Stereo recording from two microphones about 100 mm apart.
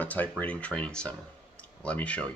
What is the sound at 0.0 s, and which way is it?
Speech, 15° left (ahead or behind).